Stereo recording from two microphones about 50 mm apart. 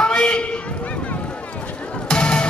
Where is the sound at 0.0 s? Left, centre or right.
Centre.